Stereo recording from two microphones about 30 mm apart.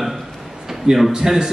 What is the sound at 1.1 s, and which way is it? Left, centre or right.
Speech, centre.